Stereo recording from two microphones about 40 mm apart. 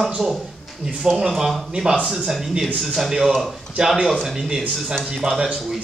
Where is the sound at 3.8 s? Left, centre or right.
Centre.